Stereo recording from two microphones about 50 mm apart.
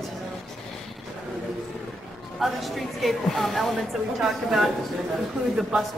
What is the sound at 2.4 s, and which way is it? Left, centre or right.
A woman's voice, centre.